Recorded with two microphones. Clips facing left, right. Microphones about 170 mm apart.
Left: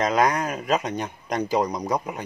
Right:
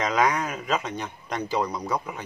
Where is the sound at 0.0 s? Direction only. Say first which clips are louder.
Left 2 dB; 35° left (ahead or behind).